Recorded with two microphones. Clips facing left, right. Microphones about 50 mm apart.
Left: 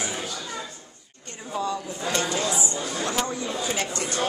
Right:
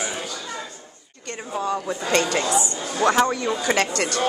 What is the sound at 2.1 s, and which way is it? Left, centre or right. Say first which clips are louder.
Speech: right 5 dB; right.